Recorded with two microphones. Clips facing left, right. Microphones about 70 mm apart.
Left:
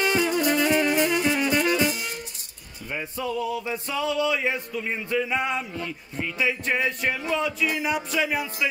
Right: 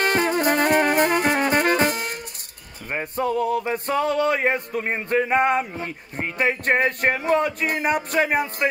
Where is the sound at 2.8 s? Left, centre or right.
Right.